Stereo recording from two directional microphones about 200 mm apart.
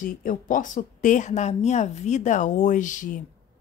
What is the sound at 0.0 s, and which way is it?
A woman's voice, 45° left (ahead or behind).